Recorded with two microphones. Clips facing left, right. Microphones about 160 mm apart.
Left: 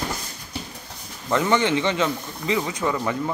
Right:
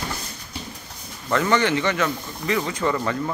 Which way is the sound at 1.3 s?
20° left (ahead or behind).